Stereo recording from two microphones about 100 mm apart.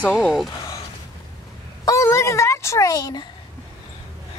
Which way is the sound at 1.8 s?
30° left (ahead or behind).